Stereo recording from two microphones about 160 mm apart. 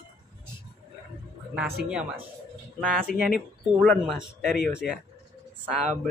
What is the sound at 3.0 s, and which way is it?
Speech, 60° right (ahead or behind).